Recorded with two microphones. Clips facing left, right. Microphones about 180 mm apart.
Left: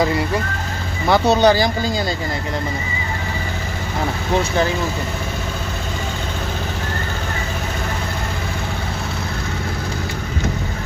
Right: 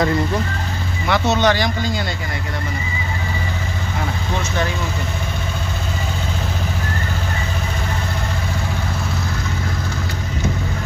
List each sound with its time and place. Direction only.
1.0 s speech: 30° left (ahead or behind)